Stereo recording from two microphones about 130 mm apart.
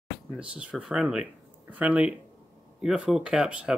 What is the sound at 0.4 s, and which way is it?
Speech, 10° right (ahead or behind).